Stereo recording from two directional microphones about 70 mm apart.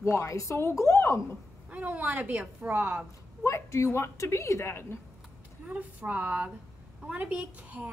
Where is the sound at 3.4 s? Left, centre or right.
Left.